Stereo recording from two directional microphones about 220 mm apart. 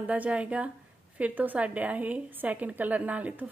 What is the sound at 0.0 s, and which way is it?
A woman's voice, 5° right (ahead or behind).